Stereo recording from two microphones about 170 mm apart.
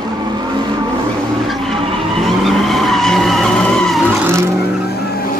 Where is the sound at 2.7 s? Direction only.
Centre (ahead or behind).